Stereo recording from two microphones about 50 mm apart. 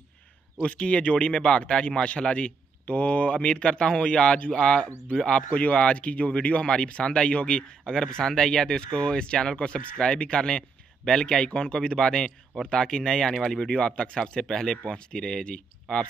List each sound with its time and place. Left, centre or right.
0.6 s a man's voice: left